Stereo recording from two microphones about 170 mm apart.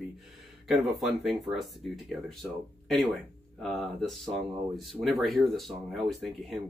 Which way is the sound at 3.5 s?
Centre (ahead or behind).